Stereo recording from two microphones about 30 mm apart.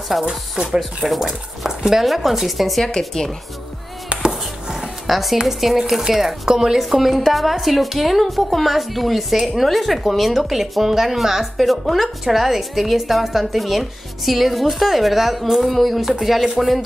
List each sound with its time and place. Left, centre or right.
0.2 s speech: centre
0.7 s a woman's voice: centre
4.7 s music: centre
5.4 s speech: centre
6.8 s a woman's voice: centre